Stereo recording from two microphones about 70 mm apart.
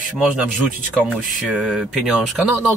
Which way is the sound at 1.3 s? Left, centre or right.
Centre.